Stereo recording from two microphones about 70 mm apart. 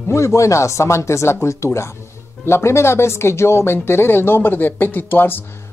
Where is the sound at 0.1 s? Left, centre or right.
Left.